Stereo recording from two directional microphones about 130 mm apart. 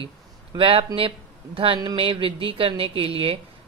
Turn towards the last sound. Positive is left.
turn(degrees=-45)  # may be behind; listen again after turning